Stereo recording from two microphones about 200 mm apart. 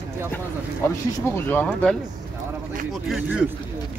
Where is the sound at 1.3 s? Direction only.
10° left (ahead or behind).